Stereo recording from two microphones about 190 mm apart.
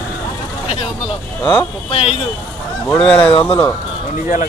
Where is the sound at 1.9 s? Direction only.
30° left (ahead or behind).